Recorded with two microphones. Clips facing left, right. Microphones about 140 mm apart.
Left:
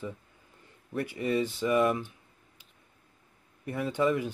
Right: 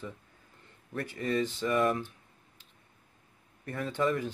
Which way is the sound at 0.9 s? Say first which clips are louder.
Left 2 dB; 10° left (ahead or behind).